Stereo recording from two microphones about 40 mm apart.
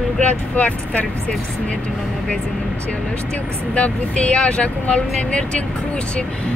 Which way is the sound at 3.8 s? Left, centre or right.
Left.